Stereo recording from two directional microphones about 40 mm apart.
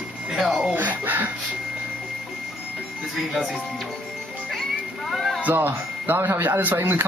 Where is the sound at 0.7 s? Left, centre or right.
Right.